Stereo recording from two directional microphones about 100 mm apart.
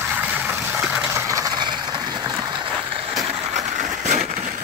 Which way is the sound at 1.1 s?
30° right (ahead or behind).